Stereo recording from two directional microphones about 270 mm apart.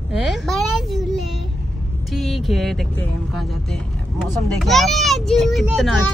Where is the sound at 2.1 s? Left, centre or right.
Centre.